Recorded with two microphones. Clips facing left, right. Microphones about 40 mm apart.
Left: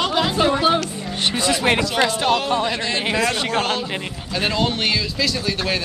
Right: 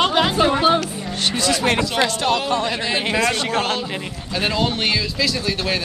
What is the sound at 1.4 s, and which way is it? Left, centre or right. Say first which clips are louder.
Speech: even; centre.